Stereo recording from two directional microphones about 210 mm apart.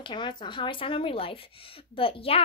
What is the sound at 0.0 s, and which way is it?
A woman's voice, 20° left (ahead or behind).